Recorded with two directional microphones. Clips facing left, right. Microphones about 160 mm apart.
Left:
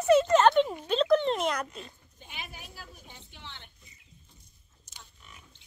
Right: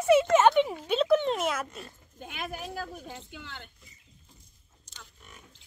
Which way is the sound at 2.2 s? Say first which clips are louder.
Right 8 dB; 90° right.